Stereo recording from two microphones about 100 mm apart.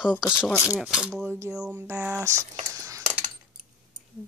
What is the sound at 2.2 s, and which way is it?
Squish, 30° right (ahead or behind).